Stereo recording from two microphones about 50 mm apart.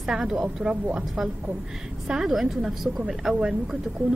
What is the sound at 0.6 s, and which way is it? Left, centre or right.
Speech, right.